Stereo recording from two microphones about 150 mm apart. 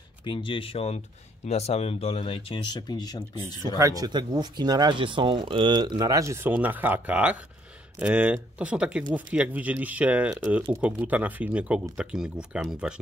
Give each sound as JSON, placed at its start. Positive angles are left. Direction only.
{"t": 0.2, "sound": "speech", "side_deg": 35}
{"t": 3.7, "sound": "speech", "side_deg": -25}